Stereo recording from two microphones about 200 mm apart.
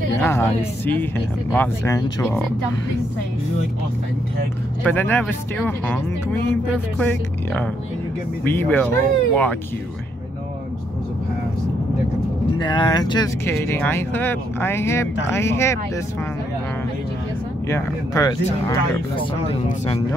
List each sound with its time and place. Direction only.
0.2 s speech: 10° left (ahead or behind)
4.8 s speech: 10° left (ahead or behind)
12.5 s speech: 25° left (ahead or behind)
17.6 s speech: 15° left (ahead or behind)
18.7 s speech: 25° left (ahead or behind)